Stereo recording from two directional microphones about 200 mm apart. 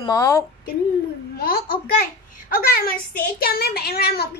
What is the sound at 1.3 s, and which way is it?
A child's voice, 50° left (ahead or behind).